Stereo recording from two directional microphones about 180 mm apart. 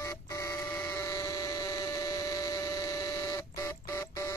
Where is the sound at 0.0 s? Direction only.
15° left (ahead or behind).